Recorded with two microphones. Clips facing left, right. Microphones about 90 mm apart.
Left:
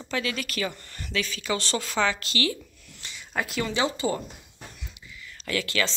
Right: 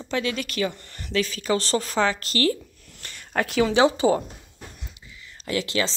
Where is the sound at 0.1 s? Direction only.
30° right (ahead or behind); by 3.4 s 50° right (ahead or behind).